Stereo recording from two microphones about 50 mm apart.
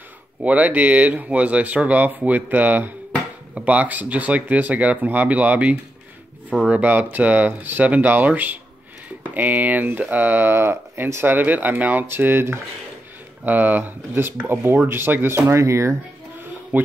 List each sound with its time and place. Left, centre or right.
0.4 s speech: right
11.3 s speech: right
13.4 s speech: right
15.6 s speech: right
16.7 s speech: right